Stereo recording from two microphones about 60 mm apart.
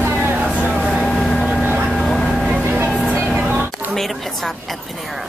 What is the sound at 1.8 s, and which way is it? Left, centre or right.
Vehicle, centre.